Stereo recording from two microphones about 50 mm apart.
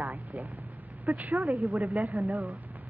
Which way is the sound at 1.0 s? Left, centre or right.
Right.